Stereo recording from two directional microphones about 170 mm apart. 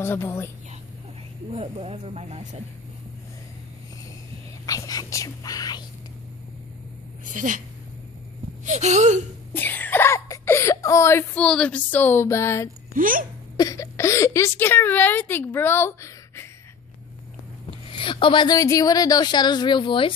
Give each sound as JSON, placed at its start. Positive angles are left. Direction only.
{"t": 0.0, "sound": "a woman's voice", "side_deg": 15}
{"t": 1.5, "sound": "speech", "side_deg": -40}
{"t": 4.6, "sound": "a woman's voice", "side_deg": 20}
{"t": 7.2, "sound": "speech", "side_deg": -50}
{"t": 8.6, "sound": "speech", "side_deg": -45}
{"t": 9.5, "sound": "speech", "side_deg": 10}
{"t": 12.9, "sound": "speech", "side_deg": -55}
{"t": 13.6, "sound": "a woman's voice", "side_deg": 20}
{"t": 17.8, "sound": "a woman's voice", "side_deg": 30}